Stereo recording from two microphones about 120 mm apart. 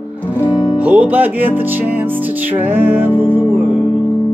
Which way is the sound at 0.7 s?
10° right (ahead or behind).